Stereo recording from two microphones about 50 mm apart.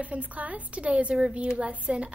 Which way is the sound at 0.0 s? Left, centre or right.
Right.